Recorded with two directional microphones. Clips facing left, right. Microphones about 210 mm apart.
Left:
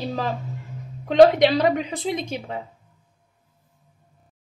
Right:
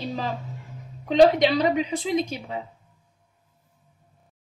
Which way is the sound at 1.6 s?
55° left (ahead or behind).